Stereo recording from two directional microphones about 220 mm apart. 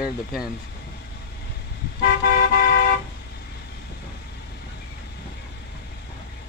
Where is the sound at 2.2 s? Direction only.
40° left (ahead or behind).